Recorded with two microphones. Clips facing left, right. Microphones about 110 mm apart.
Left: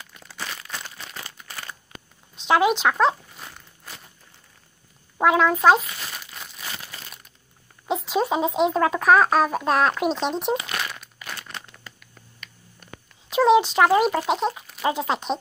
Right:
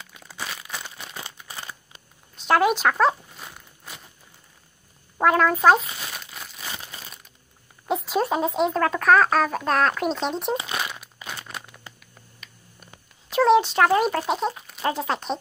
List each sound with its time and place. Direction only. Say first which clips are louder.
0.0 s crumpling: even; 10° right (ahead or behind)
1.5 s a sound: left 1 dB; 20° right (ahead or behind)
2.3 s crumpling: even; centre (ahead or behind)
5.1 s crumpling: left 1 dB; 5° left (ahead or behind)
6.7 s crumpling: right 1 dB; 20° right (ahead or behind)
7.8 s speech: even; centre (ahead or behind)
10.6 s crumpling: right 1 dB; 20° right (ahead or behind)
12.0 s finger snapping: left 2 dB; 5° right (ahead or behind)
13.3 s speech: left 1 dB; centre (ahead or behind)